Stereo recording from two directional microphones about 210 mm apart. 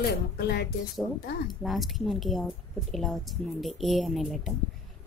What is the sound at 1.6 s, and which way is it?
Speech, centre (ahead or behind).